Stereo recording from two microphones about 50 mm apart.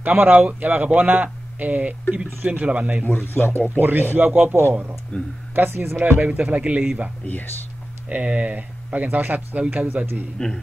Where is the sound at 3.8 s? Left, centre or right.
Right.